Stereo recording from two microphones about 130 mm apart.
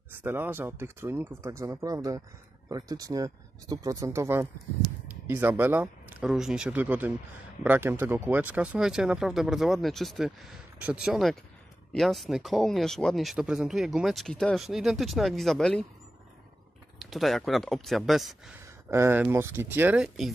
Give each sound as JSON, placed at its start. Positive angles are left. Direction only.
{"t": 0.1, "sound": "speech", "side_deg": -15}
{"t": 6.2, "sound": "speech", "side_deg": -5}
{"t": 17.0, "sound": "speech", "side_deg": 0}
{"t": 18.9, "sound": "speech", "side_deg": -20}